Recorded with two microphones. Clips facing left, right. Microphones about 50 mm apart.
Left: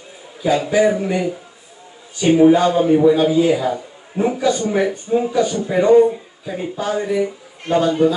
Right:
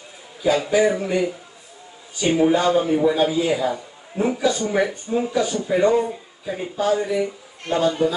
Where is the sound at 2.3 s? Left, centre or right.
Centre.